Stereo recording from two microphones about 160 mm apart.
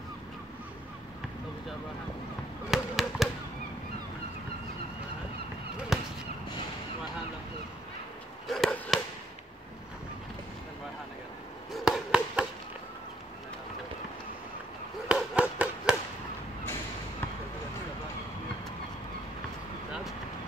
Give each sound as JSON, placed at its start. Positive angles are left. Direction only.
{"t": 2.7, "sound": "basketball bounce", "side_deg": 0}
{"t": 5.9, "sound": "a sound", "side_deg": -5}
{"t": 8.5, "sound": "chop", "side_deg": 5}
{"t": 11.7, "sound": "chop", "side_deg": 0}
{"t": 15.0, "sound": "chop", "side_deg": -5}